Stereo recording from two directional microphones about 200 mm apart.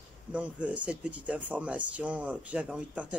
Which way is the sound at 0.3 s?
5° right (ahead or behind).